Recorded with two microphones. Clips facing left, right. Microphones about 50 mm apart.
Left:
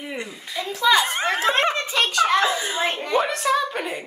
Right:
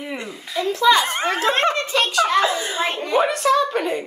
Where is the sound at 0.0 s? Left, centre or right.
Centre.